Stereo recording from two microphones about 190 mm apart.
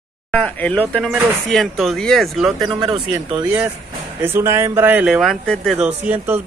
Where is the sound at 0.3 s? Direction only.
5° left (ahead or behind).